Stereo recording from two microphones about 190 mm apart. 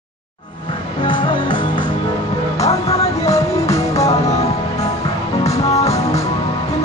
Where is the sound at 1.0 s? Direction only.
25° left (ahead or behind).